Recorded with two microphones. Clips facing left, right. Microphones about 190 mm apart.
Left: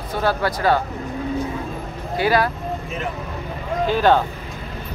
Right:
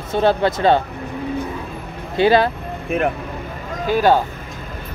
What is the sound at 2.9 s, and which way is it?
Speech, 60° right (ahead or behind).